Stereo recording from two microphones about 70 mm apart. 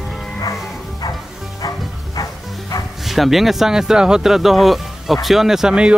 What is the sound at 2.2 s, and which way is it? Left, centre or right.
Music, left.